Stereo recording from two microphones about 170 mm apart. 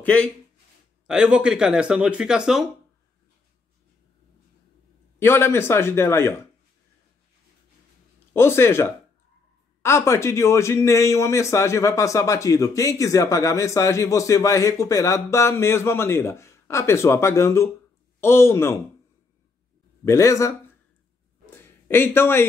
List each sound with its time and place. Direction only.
0.0 s speech: 5° left (ahead or behind)
1.0 s speech: 5° right (ahead or behind)
5.2 s speech: 15° left (ahead or behind)
8.3 s speech: 15° left (ahead or behind)
20.1 s speech: 15° left (ahead or behind)
21.5 s a sound: 15° left (ahead or behind)